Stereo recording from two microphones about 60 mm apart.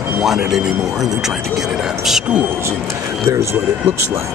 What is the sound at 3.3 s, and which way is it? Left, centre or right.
Speech, right.